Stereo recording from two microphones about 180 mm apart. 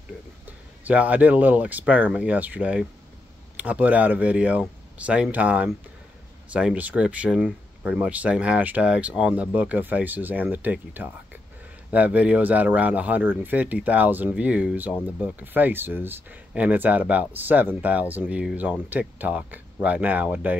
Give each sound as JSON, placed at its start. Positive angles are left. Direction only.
{"t": 0.8, "sound": "speech", "side_deg": -10}